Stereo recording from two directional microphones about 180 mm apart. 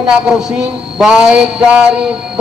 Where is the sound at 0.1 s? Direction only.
Centre (ahead or behind).